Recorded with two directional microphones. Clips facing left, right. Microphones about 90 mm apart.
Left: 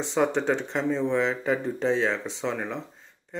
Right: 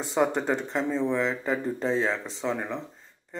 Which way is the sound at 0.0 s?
5° right (ahead or behind).